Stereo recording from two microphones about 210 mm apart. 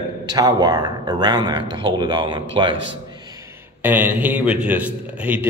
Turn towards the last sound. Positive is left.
turn(degrees=-5)  # may be behind; listen again after turning